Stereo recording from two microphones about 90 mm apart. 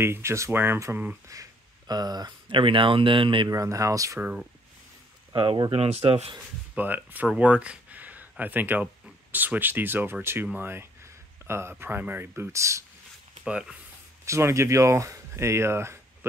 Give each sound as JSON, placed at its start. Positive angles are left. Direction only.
{"t": 0.0, "sound": "speech", "side_deg": -30}
{"t": 1.3, "sound": "speech", "side_deg": -45}
{"t": 3.4, "sound": "speech", "side_deg": -40}
{"t": 4.2, "sound": "speech", "side_deg": -15}
{"t": 5.3, "sound": "speech", "side_deg": -65}
{"t": 6.7, "sound": "speech", "side_deg": -20}
{"t": 13.4, "sound": "speech", "side_deg": -10}
{"t": 14.2, "sound": "speech", "side_deg": -30}